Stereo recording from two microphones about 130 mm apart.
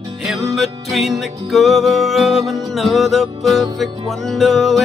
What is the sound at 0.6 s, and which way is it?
Music, centre (ahead or behind).